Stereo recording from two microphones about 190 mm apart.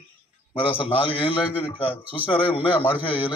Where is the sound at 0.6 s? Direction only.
25° left (ahead or behind).